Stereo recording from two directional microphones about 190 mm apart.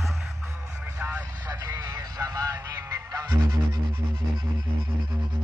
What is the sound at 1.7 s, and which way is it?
Music, 15° right (ahead or behind).